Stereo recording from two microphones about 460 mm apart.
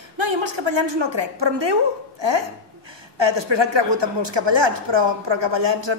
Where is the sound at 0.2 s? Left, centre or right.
Right.